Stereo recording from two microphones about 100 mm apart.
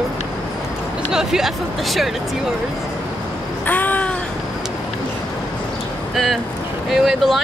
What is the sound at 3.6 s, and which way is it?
Crow, 15° left (ahead or behind).